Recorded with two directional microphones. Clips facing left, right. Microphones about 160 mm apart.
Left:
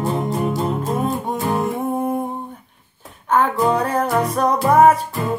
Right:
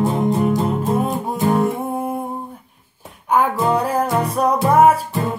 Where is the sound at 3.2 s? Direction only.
10° right (ahead or behind).